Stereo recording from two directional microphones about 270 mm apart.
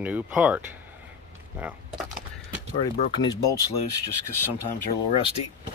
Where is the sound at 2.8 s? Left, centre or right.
Left.